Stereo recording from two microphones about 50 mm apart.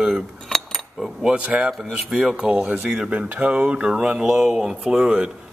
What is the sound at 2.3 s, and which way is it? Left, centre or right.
Speech, centre.